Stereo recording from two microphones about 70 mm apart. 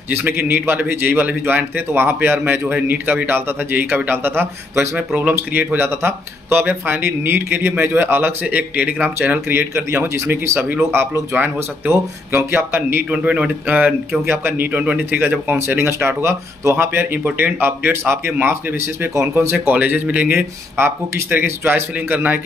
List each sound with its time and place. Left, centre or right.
0.1 s a man's voice: right
13.2 s a man's voice: centre
14.2 s a man's voice: right
19.6 s a man's voice: right
20.3 s a man's voice: right